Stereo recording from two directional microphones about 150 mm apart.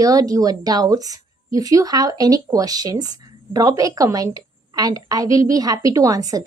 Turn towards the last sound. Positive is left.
turn(degrees=-25)  # may be behind; listen again after turning